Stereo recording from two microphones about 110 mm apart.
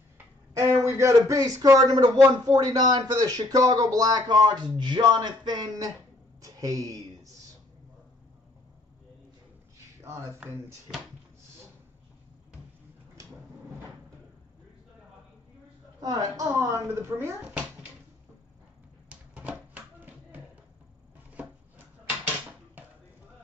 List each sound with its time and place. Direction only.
0.6 s a man's voice: 30° right (ahead or behind)
10.0 s speech: 25° right (ahead or behind)
13.2 s drawer open or close: 30° right (ahead or behind)
16.0 s speech: 35° right (ahead or behind)
19.0 s a sound: 10° right (ahead or behind)